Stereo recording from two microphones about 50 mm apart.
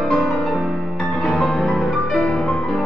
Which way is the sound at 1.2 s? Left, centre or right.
Left.